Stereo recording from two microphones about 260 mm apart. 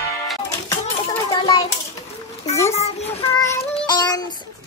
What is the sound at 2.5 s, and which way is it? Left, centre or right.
Speech, centre.